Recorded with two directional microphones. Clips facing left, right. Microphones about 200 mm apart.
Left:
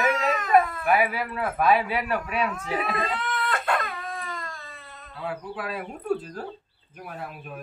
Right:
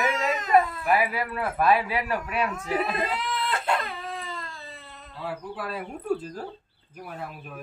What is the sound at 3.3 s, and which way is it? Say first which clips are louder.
Baby cry: even; 25° right (ahead or behind).